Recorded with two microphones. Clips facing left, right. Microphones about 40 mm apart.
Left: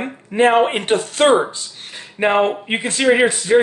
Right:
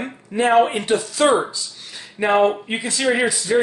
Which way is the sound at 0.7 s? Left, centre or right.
Left.